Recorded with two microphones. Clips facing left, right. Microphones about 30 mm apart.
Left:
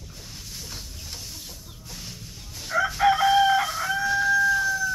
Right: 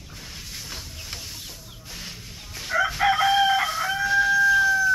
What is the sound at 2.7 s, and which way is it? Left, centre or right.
Chicken, right.